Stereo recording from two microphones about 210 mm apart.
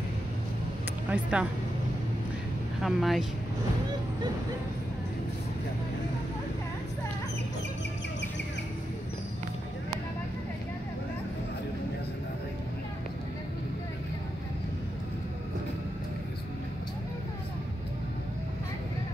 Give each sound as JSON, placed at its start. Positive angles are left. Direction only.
{"t": 1.1, "sound": "speech", "side_deg": -5}
{"t": 2.8, "sound": "speech", "side_deg": 0}